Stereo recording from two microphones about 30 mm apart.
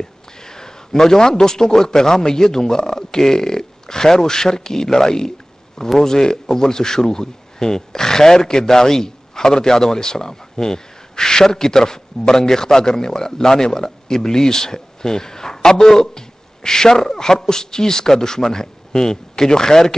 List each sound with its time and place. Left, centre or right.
0.0 s a man's voice: left